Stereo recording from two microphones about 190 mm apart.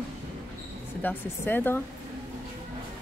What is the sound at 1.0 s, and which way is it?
Speech, 10° left (ahead or behind).